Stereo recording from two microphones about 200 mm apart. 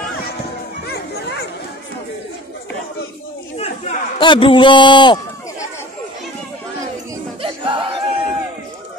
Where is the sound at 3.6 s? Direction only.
25° left (ahead or behind).